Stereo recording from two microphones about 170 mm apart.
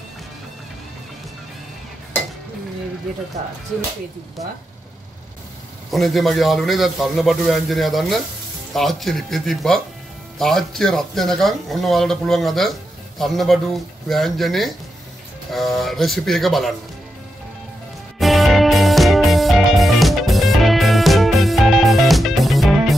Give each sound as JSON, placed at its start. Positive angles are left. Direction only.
{"t": 5.9, "sound": "a man's voice", "side_deg": 0}
{"t": 18.2, "sound": "music", "side_deg": 0}